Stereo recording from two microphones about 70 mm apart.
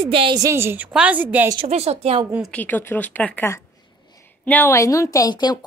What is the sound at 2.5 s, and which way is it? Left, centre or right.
Speech, left.